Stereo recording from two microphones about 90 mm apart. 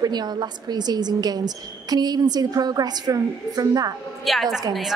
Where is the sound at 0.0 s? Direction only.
50° right (ahead or behind).